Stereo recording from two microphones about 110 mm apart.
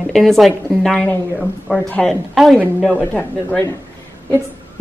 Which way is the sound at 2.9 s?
10° left (ahead or behind).